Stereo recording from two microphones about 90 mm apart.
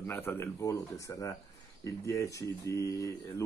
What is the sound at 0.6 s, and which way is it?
Speech, 35° left (ahead or behind).